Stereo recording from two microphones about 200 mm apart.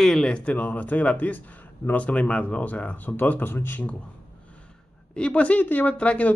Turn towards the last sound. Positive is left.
turn(degrees=5)  # may be behind; listen again after turning